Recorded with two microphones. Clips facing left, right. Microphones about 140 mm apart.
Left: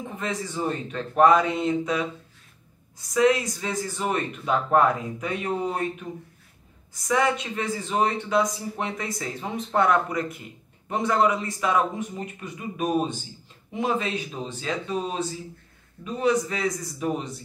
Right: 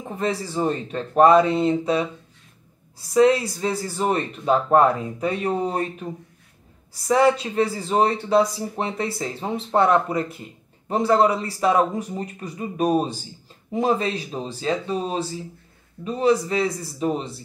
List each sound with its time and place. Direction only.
0.1 s a man's voice: 35° right (ahead or behind)